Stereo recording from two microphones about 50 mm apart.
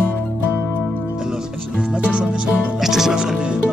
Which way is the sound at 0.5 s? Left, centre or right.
Left.